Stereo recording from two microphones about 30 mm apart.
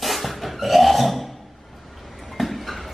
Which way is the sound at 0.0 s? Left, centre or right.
Centre.